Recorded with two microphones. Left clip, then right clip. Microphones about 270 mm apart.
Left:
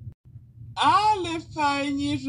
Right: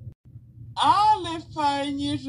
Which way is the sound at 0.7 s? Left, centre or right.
Centre.